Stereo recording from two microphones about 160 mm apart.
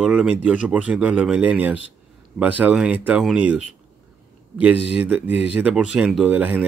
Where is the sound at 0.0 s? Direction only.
5° right (ahead or behind).